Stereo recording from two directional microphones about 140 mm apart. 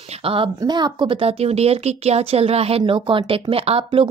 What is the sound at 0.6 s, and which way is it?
Speech, 30° right (ahead or behind).